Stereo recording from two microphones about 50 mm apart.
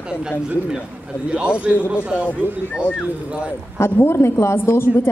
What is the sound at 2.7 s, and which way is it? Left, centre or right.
Speech, left.